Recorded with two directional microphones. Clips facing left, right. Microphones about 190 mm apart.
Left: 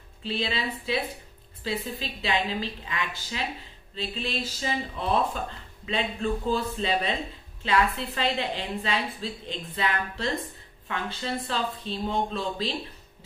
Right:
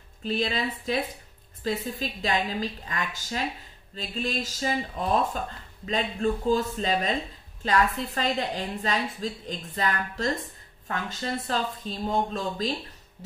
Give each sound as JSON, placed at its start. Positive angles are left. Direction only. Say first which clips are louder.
{"t": 0.2, "sound": "a woman's voice", "louder": "right 2 dB", "side_deg": -45}
{"t": 6.5, "sound": "a woman's voice", "louder": "right 2 dB", "side_deg": -40}